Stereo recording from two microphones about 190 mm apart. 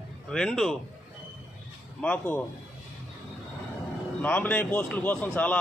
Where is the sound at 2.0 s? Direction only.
10° left (ahead or behind).